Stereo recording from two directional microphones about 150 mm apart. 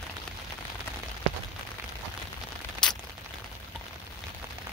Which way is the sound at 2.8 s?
5° left (ahead or behind).